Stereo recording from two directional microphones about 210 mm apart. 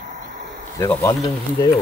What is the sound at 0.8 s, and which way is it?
Speech, 15° left (ahead or behind).